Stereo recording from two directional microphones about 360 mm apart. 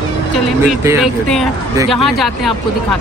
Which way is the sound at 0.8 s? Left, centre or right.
Centre.